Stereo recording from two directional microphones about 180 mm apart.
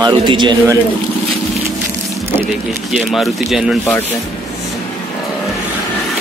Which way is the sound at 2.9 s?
Centre (ahead or behind).